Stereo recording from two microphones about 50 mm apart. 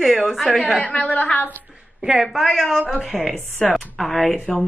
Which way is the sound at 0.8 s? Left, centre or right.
Left.